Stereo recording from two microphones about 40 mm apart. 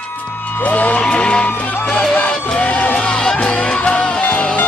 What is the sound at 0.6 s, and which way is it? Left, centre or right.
Music, left.